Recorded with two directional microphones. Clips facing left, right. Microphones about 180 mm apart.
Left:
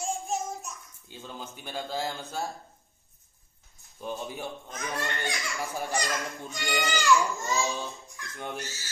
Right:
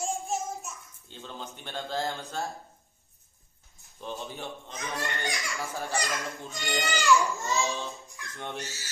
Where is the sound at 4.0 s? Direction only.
10° left (ahead or behind).